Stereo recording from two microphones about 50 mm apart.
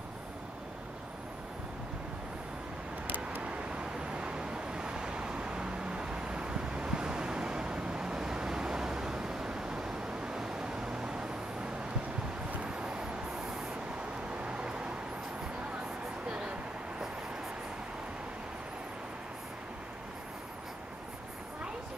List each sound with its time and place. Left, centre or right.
3.4 s vehicle: right
12.5 s vehicle: centre
14.3 s a sound: right
16.3 s vehicle: right